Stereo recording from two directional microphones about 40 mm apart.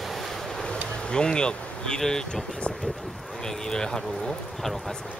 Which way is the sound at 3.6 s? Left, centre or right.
Centre.